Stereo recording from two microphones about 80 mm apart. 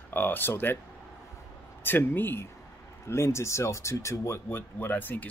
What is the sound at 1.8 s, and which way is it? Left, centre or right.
Speech, left.